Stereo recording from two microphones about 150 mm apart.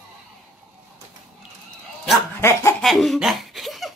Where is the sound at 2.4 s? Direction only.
20° left (ahead or behind).